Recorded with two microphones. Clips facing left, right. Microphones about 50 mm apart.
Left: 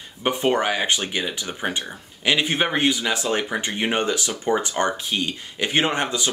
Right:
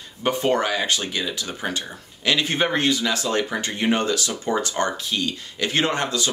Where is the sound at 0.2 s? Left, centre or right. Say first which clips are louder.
Even; left.